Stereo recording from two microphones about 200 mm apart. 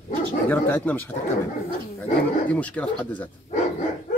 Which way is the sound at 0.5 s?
10° left (ahead or behind).